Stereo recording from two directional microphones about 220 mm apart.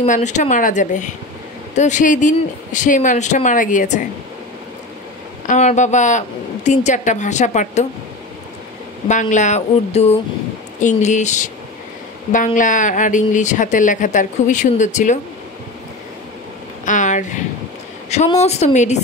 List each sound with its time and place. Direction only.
0.0 s speech: 35° left (ahead or behind)
5.5 s speech: 30° left (ahead or behind)
9.0 s speech: 35° left (ahead or behind)
12.5 s speech: 35° left (ahead or behind)
16.8 s a sound: 35° left (ahead or behind)
18.1 s speech: 30° left (ahead or behind)